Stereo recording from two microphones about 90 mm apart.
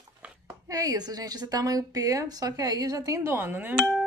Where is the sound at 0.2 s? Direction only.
15° right (ahead or behind).